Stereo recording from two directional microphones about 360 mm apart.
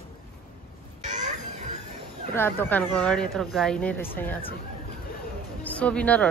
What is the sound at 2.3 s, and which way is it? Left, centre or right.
Speech, centre.